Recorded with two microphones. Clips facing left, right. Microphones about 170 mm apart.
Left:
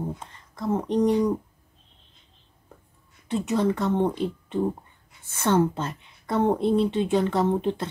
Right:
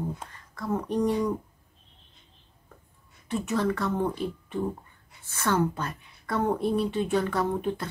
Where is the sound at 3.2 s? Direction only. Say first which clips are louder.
Left 3 dB; 20° left (ahead or behind).